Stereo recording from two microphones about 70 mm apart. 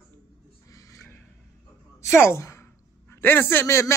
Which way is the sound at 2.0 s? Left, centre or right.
Left.